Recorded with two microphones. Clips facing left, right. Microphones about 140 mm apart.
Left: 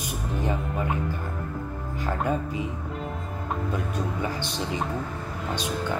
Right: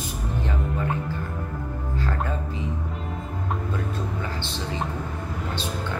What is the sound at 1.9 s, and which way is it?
Music, 15° left (ahead or behind).